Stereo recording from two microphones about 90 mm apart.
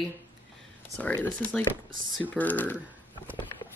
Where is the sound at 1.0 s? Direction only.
10° left (ahead or behind).